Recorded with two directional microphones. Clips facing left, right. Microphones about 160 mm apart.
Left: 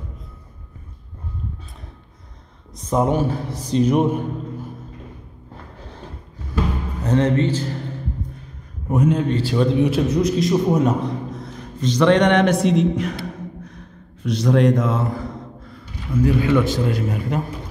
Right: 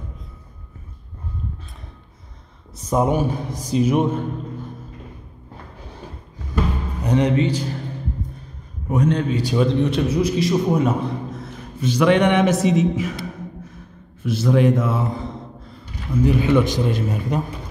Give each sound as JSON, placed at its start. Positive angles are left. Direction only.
{"t": 2.7, "sound": "a man's voice", "side_deg": -10}
{"t": 7.0, "sound": "a man's voice", "side_deg": -15}
{"t": 8.9, "sound": "a man's voice", "side_deg": 5}
{"t": 9.3, "sound": "a man's voice", "side_deg": -15}
{"t": 9.7, "sound": "a man's voice", "side_deg": 5}
{"t": 15.1, "sound": "gasp", "side_deg": -25}
{"t": 16.2, "sound": "a man's voice", "side_deg": -20}